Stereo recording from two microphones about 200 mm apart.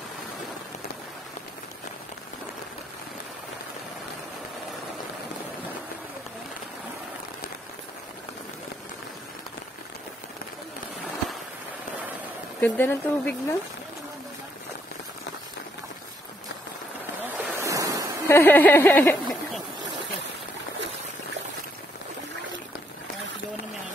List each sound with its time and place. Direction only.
12.5 s speech: 10° left (ahead or behind)
17.2 s waves: 15° right (ahead or behind)
18.2 s speech: 10° left (ahead or behind)